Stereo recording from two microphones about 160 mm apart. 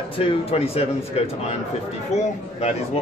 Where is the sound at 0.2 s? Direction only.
35° left (ahead or behind).